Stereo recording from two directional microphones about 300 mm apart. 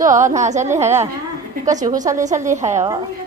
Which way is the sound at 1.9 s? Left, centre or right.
Centre.